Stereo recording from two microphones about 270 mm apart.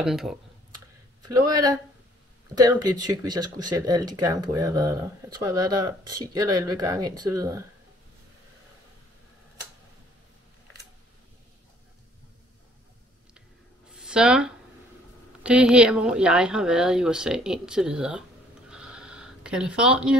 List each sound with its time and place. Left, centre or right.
0.0 s a woman's voice: centre
1.2 s speech: centre
13.9 s a sound: centre
15.4 s a woman's voice: centre
18.7 s bleat: centre